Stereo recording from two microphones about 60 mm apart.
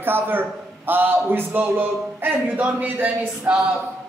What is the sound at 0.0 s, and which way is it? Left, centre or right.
A man's voice, right.